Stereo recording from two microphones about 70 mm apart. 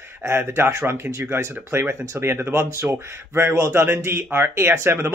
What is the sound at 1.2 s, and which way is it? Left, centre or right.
Speech, right.